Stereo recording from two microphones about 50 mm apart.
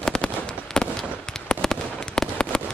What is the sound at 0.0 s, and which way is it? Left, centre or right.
Fireworks, centre.